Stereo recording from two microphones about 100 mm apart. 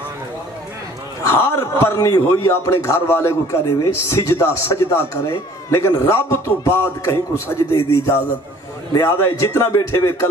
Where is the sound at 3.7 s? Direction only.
35° left (ahead or behind).